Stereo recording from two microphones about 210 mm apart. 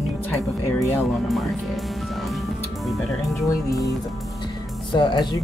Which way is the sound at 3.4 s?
15° left (ahead or behind).